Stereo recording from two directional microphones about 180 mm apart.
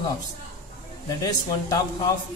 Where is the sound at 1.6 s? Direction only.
20° left (ahead or behind).